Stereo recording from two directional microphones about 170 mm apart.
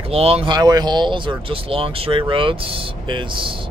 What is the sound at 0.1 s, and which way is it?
Speech, 35° right (ahead or behind).